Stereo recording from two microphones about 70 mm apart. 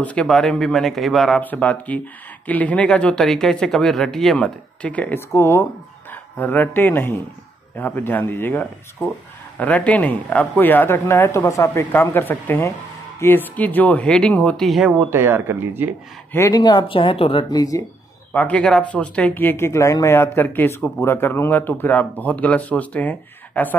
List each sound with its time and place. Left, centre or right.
0.0 s speech: centre
0.3 s speech: centre
1.4 s speech: left; by 4.4 s centre
4.4 s speech: centre
5.3 s speech: left
6.3 s speech: left
11.9 s speech: left
14.6 s speech: centre
15.0 s speech: right
16.5 s speech: left
17.5 s speech: left
18.3 s speech: left
20.2 s speech: left